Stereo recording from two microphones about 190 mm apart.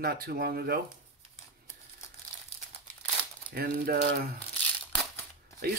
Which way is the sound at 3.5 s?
55° right (ahead or behind).